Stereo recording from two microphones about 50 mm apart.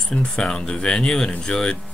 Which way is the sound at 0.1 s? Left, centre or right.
Centre.